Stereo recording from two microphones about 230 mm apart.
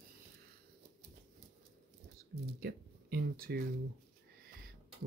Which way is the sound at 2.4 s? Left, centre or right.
Right.